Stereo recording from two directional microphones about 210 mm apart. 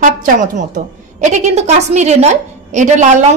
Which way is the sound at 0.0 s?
40° right (ahead or behind).